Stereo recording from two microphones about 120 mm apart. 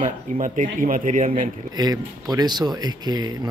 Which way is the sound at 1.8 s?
35° right (ahead or behind).